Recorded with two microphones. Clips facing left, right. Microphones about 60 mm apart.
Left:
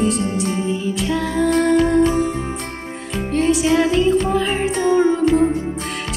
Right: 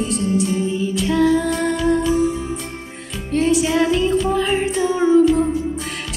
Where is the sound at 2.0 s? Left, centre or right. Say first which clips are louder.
Left 1 dB; left.